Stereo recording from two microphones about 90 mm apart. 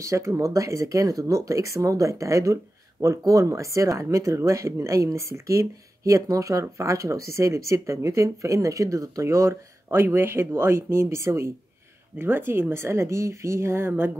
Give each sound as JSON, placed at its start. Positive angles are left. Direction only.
{"t": 0.0, "sound": "speech", "side_deg": -35}